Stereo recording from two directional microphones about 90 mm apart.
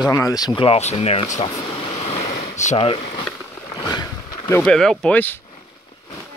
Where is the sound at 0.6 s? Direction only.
85° left.